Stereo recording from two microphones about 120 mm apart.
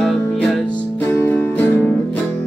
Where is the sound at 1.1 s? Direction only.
15° left (ahead or behind).